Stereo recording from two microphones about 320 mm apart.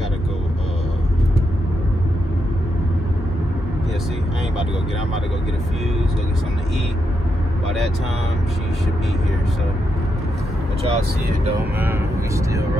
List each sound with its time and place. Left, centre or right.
10.9 s speech: centre